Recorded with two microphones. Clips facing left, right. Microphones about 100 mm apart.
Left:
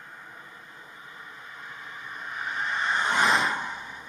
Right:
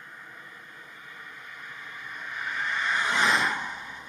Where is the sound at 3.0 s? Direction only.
35° left (ahead or behind).